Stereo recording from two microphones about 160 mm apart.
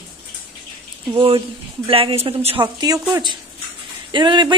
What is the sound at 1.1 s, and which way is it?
Speech, 35° right (ahead or behind).